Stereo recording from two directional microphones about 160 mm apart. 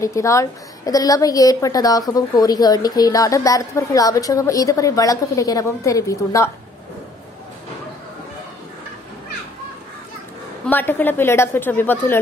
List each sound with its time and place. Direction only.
0.0 s a woman's voice: 20° left (ahead or behind)
10.7 s a woman's voice: 10° left (ahead or behind)